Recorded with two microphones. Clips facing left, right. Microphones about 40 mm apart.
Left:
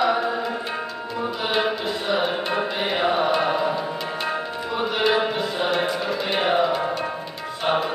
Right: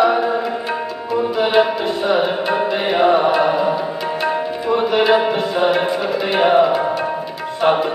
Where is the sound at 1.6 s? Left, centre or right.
Right.